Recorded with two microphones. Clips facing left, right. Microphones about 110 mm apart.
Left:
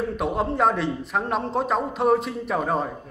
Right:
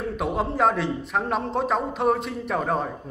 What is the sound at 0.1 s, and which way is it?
A man's voice, centre (ahead or behind).